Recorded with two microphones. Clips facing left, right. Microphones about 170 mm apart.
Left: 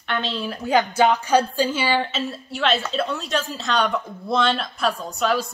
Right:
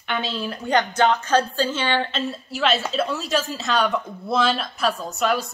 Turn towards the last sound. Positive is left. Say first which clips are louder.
# even
turn(degrees=0)  # may be behind; listen again after turning